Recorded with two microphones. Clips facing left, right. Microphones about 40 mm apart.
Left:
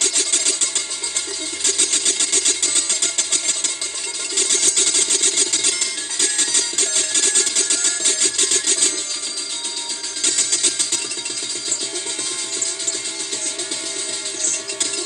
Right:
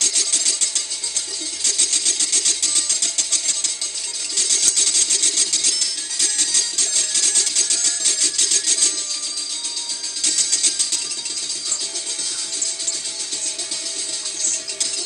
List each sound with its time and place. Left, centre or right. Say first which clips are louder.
0.0 s a sound: left 2 dB; left
1.6 s engine: left 1 dB; left
4.4 s music: left 2 dB; left
10.2 s music: left 2 dB; left